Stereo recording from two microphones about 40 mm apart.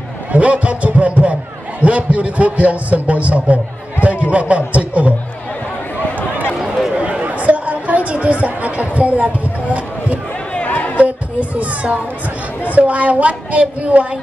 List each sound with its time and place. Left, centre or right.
0.3 s a man's voice: right
7.0 s chatter: right
10.7 s chatter: left
11.0 s a man's voice: right